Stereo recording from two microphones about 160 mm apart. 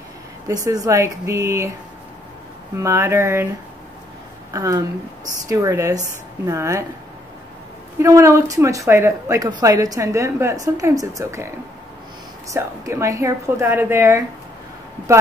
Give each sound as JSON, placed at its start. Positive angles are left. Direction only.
{"t": 0.7, "sound": "speech", "side_deg": -20}
{"t": 2.7, "sound": "a woman's voice", "side_deg": -15}
{"t": 4.5, "sound": "speech", "side_deg": -20}
{"t": 8.0, "sound": "speech", "side_deg": -20}
{"t": 12.5, "sound": "a woman's voice", "side_deg": -20}